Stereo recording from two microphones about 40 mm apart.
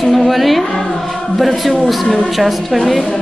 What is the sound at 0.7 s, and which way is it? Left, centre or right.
Music, centre.